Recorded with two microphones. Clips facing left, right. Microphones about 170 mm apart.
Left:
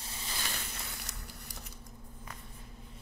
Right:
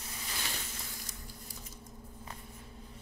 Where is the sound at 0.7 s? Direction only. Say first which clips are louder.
Left 1 dB; 70° left (ahead or behind).